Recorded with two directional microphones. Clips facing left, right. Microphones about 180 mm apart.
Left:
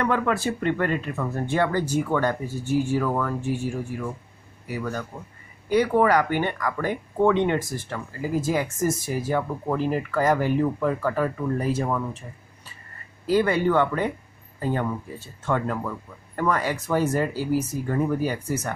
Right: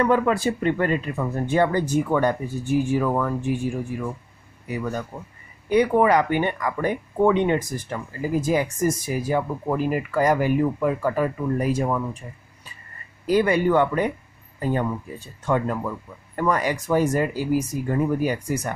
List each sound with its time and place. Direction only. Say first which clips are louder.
0.0 s a man's voice: right 4 dB; 15° right (ahead or behind)
13.3 s speech: right 2 dB; 15° right (ahead or behind)